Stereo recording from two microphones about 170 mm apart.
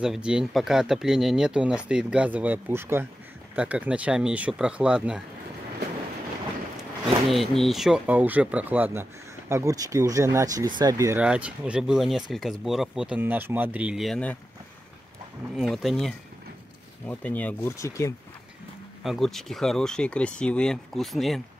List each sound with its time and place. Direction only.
0.0 s speech: 5° right (ahead or behind)
7.2 s speech: centre (ahead or behind); by 11.2 s 15° right (ahead or behind)
11.2 s speech: 5° right (ahead or behind)
15.5 s speech: centre (ahead or behind); by 18.1 s 15° left (ahead or behind)
19.0 s speech: centre (ahead or behind)